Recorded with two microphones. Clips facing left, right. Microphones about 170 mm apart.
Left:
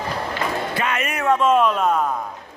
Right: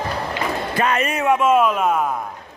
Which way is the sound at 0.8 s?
35° right (ahead or behind).